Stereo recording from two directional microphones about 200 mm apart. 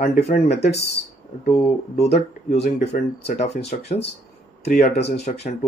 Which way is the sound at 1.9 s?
35° left (ahead or behind).